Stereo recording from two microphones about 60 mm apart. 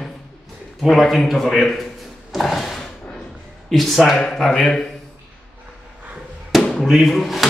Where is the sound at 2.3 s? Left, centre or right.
Centre.